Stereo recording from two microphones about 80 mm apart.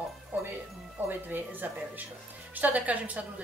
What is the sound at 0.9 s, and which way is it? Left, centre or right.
A woman's voice, right.